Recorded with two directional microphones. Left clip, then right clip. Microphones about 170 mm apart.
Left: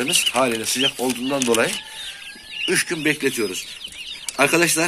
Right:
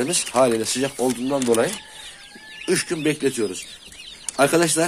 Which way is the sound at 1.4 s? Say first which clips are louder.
Left 1 dB; 30° right (ahead or behind).